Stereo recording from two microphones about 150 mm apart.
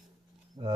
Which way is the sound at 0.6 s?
30° right (ahead or behind).